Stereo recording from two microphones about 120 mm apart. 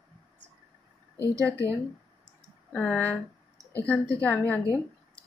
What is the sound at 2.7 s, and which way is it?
Speech, 10° left (ahead or behind).